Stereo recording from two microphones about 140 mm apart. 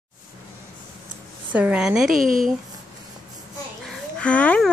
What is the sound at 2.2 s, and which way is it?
Speech, 75° right (ahead or behind).